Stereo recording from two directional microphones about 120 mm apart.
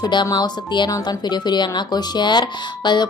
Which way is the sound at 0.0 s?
35° left (ahead or behind).